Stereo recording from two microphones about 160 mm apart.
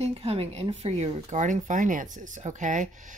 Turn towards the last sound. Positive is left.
turn(degrees=-50)  # may be behind; listen again after turning